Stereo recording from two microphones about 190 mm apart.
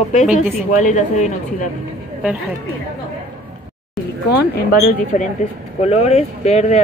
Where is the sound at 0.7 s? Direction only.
40° left (ahead or behind).